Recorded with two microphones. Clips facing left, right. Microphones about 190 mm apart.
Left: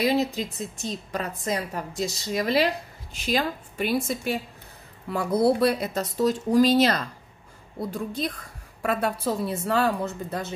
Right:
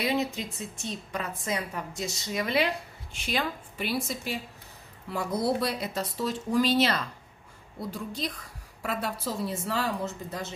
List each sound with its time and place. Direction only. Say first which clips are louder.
0.0 s a woman's voice: left 5 dB; 35° left (ahead or behind)
7.9 s a woman's voice: left 4 dB; 50° left (ahead or behind)